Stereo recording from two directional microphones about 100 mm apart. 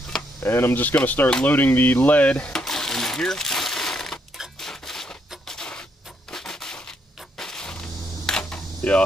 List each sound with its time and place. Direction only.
0.4 s a sound: 25° left (ahead or behind); by 6.8 s 5° left (ahead or behind)
7.3 s music: 5° left (ahead or behind)
8.3 s camera: 5° left (ahead or behind)